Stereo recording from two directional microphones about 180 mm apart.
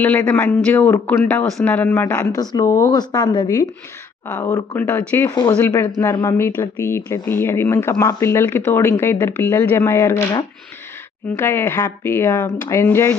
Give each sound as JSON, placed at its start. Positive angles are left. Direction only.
{"t": 0.0, "sound": "speech", "side_deg": 10}